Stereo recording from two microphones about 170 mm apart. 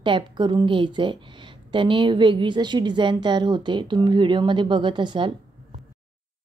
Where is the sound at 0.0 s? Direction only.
30° right (ahead or behind).